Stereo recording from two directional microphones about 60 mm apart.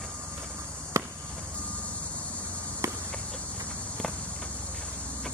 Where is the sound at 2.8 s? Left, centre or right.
Right.